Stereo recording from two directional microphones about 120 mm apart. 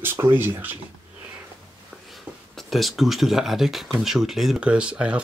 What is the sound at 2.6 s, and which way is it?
Speech, centre (ahead or behind).